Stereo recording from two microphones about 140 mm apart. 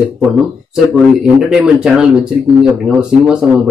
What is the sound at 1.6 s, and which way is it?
Speech, 5° right (ahead or behind).